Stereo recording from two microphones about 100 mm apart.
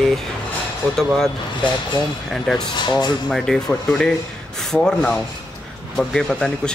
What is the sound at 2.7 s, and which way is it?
Speech, 45° left (ahead or behind).